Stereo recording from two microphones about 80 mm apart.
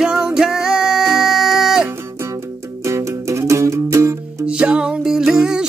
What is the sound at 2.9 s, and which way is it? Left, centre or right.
Music, right.